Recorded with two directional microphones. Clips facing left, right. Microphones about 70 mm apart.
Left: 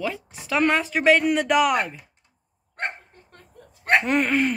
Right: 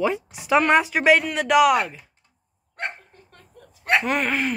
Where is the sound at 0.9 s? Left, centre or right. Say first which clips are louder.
Even; centre.